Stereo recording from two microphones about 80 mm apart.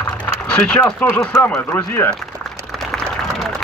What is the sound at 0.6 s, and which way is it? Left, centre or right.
Speech, centre.